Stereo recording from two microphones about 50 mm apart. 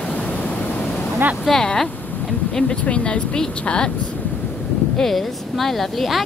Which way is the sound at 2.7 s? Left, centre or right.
Left.